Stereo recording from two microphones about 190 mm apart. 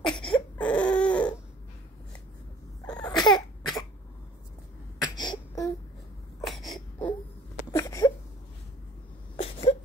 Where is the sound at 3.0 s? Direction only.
20° left (ahead or behind).